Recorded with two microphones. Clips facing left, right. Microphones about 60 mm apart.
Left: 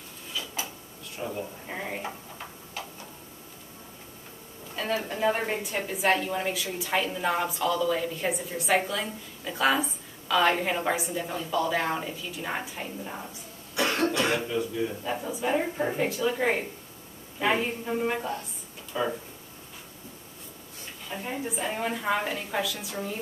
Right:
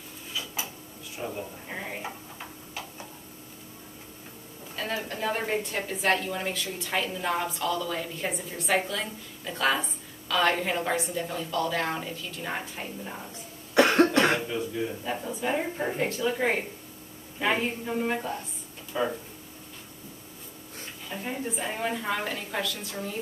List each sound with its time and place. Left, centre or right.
0.3 s a sound: centre
1.1 s speech: centre
5.0 s a woman's voice: centre
13.7 s cough: right
14.1 s throat clearing: right
14.5 s a man's voice: centre
15.0 s a woman's voice: centre
18.9 s a man's voice: centre
21.1 s a woman's voice: centre